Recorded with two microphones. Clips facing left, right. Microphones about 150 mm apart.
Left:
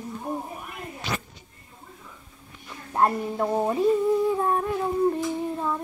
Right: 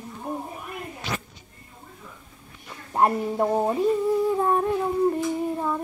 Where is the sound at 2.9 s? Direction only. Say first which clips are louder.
Right 1 dB; 10° right (ahead or behind).